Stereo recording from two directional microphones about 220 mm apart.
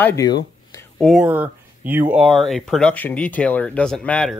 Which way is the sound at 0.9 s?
Centre (ahead or behind).